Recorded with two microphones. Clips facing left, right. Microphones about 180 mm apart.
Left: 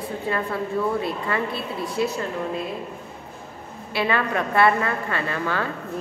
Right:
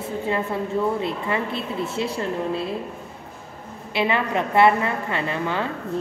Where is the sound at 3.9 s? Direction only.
20° right (ahead or behind).